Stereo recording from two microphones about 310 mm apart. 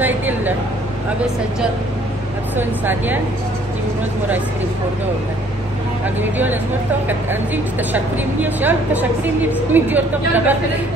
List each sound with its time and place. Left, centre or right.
0.0 s speech: centre
2.5 s speech: centre
6.3 s speech: centre